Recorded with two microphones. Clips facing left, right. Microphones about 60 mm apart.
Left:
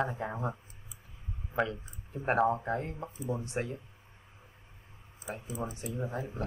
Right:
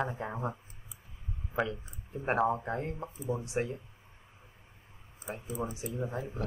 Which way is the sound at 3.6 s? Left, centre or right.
Centre.